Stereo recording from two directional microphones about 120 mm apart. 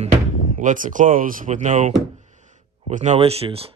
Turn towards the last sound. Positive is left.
turn(degrees=-55)  # may be behind; listen again after turning